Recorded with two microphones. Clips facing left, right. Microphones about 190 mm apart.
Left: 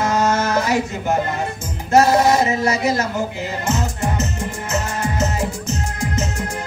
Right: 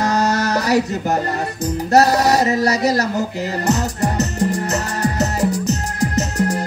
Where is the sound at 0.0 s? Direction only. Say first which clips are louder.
Even; 40° right (ahead or behind).